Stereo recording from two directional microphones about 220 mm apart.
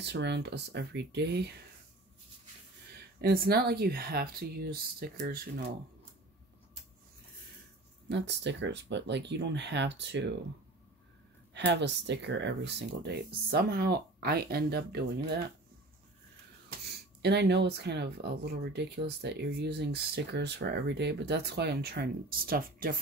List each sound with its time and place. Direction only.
0.0 s speech: 50° right (ahead or behind)
3.2 s speech: 45° right (ahead or behind)
8.1 s speech: 55° right (ahead or behind)
11.5 s speech: 50° right (ahead or behind)
16.9 s speech: 50° right (ahead or behind)